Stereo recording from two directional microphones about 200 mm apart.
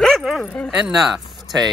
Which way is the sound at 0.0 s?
Centre (ahead or behind).